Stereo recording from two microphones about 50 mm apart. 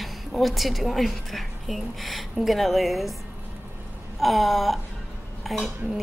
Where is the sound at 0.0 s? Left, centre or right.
Centre.